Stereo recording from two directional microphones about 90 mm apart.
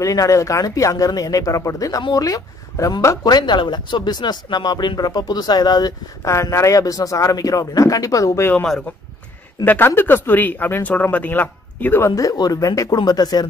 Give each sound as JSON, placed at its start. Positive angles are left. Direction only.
{"t": 0.0, "sound": "speech", "side_deg": 40}
{"t": 3.3, "sound": "speech", "side_deg": 55}
{"t": 6.2, "sound": "speech", "side_deg": 35}
{"t": 9.7, "sound": "speech", "side_deg": 25}
{"t": 12.0, "sound": "speech", "side_deg": 40}